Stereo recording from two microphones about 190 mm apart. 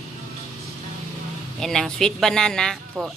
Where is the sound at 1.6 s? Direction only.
Centre (ahead or behind).